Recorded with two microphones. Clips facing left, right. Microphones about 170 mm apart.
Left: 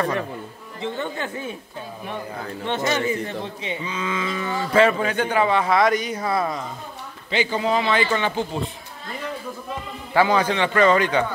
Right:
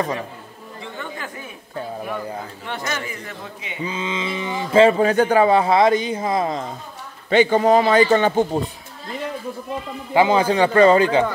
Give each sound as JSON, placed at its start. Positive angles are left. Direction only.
{"t": 0.9, "sound": "speech", "side_deg": 25}
{"t": 2.6, "sound": "speech", "side_deg": 20}
{"t": 3.8, "sound": "a man's voice", "side_deg": -25}
{"t": 4.7, "sound": "a man's voice", "side_deg": -30}
{"t": 7.2, "sound": "a man's voice", "side_deg": -50}
{"t": 10.1, "sound": "a man's voice", "side_deg": -25}